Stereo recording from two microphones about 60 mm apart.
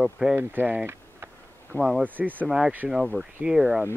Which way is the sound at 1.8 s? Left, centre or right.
Centre.